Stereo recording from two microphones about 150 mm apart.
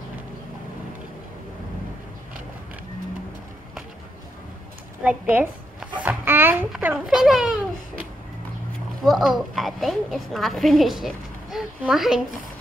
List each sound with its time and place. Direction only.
5.0 s a woman's voice: 10° right (ahead or behind)
6.0 s babbling: 15° right (ahead or behind)
6.7 s a woman's voice: 10° right (ahead or behind)
9.0 s a woman's voice: centre (ahead or behind)